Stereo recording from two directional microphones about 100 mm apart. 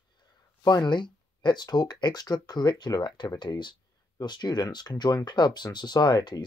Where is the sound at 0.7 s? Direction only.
50° left (ahead or behind).